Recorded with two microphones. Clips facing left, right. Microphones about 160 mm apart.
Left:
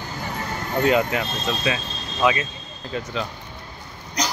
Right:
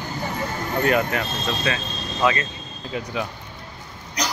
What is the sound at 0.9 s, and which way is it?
Speech, 15° left (ahead or behind).